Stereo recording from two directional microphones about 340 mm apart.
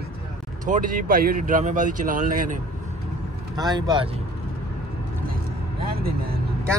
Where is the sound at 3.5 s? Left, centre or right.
Centre.